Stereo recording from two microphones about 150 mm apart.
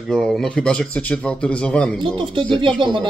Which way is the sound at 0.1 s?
Centre (ahead or behind).